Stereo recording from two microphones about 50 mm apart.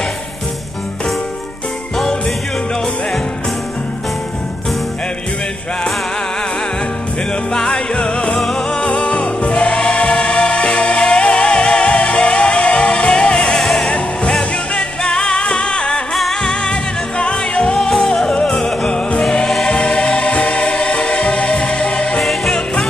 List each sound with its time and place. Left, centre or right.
7.5 s music: centre
8.4 s choir: centre
13.6 s music: centre
13.8 s music: centre
17.7 s music: centre
19.2 s music: centre
22.2 s music: centre